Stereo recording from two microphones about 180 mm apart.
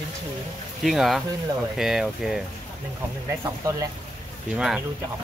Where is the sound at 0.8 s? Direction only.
Centre (ahead or behind).